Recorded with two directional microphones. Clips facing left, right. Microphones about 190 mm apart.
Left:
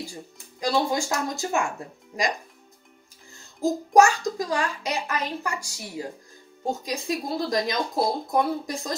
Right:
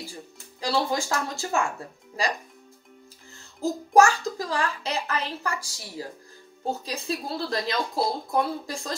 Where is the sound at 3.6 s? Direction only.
15° left (ahead or behind).